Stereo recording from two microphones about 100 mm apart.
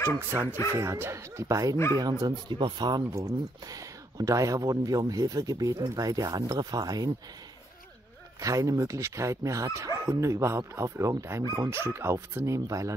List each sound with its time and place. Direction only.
0.3 s speech: 20° right (ahead or behind); by 7.1 s 40° right (ahead or behind)
8.4 s speech: 35° right (ahead or behind)